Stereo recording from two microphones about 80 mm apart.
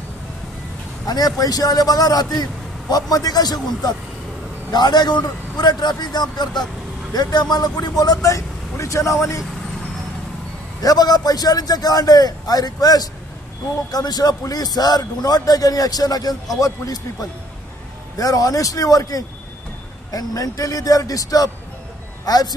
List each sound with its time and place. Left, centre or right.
1.0 s a man's voice: left
8.0 s speech: left
10.8 s a man's voice: left